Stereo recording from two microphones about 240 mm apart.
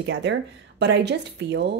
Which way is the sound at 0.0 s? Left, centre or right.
Right.